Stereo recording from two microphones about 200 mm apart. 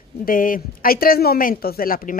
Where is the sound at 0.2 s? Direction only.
45° left (ahead or behind).